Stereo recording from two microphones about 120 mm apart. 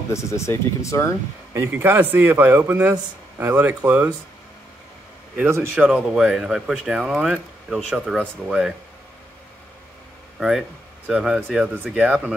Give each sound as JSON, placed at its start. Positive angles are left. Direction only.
{"t": 0.1, "sound": "speech", "side_deg": 25}
{"t": 1.5, "sound": "a man's voice", "side_deg": -20}
{"t": 5.4, "sound": "a man's voice", "side_deg": -20}
{"t": 5.9, "sound": "speech", "side_deg": -5}
{"t": 11.1, "sound": "a man's voice", "side_deg": -5}